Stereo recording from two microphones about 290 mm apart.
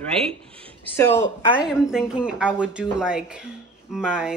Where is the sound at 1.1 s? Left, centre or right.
Left.